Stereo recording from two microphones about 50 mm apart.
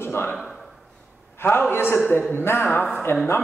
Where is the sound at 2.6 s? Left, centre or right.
Left.